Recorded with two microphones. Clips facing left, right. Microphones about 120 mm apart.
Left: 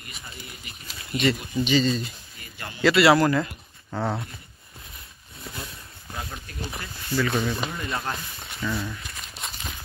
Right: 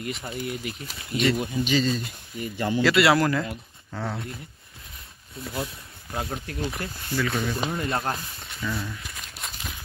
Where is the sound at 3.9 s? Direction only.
35° left (ahead or behind).